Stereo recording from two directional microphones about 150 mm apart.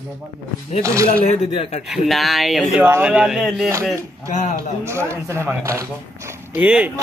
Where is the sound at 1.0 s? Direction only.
35° left (ahead or behind).